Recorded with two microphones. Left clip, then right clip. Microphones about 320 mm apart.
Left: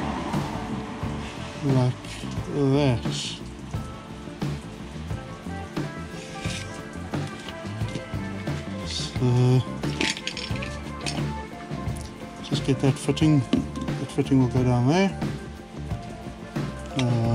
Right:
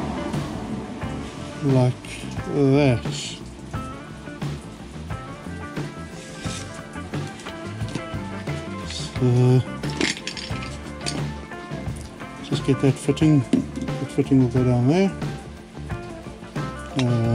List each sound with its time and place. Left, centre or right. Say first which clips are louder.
1.8 s speech: right 4 dB; centre
8.8 s music: right 2 dB; centre
12.4 s speech: right 3 dB; centre
16.9 s music: right 2 dB; centre